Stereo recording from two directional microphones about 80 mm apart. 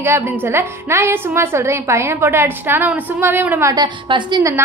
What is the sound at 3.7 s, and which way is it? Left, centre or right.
Speech, right.